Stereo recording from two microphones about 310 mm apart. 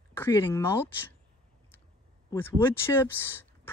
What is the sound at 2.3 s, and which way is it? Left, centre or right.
Speech, centre.